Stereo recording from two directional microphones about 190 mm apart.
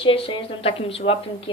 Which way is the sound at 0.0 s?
30° left (ahead or behind).